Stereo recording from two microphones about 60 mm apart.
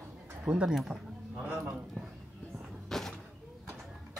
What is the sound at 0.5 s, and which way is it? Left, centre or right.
Speech, centre.